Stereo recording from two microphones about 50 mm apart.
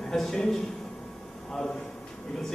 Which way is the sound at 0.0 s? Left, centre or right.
Centre.